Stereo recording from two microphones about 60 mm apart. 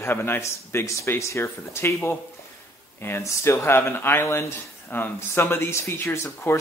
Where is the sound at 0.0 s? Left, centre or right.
Left.